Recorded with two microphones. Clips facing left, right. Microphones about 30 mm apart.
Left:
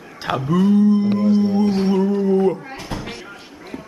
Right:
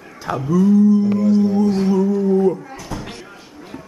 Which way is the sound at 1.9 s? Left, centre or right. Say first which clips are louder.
Right 1 dB; left.